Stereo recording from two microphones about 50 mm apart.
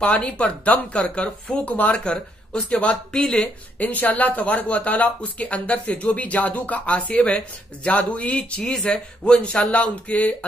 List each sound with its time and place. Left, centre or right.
0.0 s speech: left
3.7 s speech: left
8.5 s speech: centre
8.8 s speech: left